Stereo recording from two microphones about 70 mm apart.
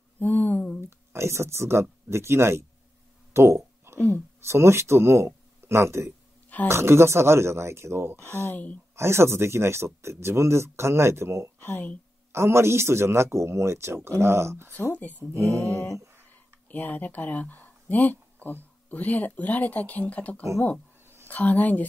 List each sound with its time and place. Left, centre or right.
0.2 s a sound: left
0.7 s speech: right
3.3 s a sound: right
4.4 s speech: right
8.5 s speech: left
8.9 s speech: right
11.6 s speech: left
12.3 s speech: right
15.0 s speech: left
15.3 s mantra: right
16.6 s speech: left
21.0 s a sound: right
21.3 s speech: left